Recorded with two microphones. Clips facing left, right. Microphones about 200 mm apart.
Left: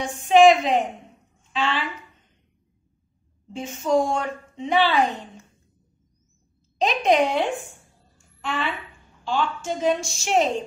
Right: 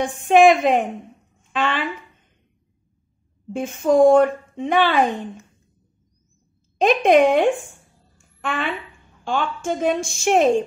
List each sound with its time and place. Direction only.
0.0 s a woman's voice: 55° right (ahead or behind)
3.5 s a woman's voice: 55° right (ahead or behind)
6.8 s a woman's voice: 55° right (ahead or behind)